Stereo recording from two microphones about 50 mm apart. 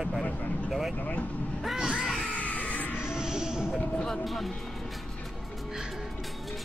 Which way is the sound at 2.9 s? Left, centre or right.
Centre.